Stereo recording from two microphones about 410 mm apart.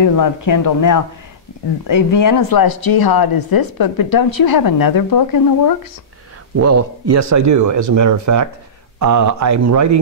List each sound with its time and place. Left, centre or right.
0.0 s speech: left
6.5 s speech: right